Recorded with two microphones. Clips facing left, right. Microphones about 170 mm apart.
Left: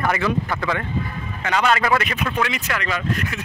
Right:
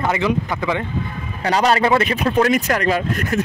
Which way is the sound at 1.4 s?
35° right (ahead or behind).